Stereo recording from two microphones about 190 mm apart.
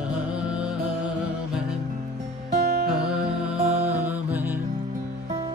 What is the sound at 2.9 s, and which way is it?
Music, 5° right (ahead or behind).